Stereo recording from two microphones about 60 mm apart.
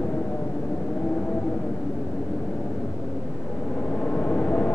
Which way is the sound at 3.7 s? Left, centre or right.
Left.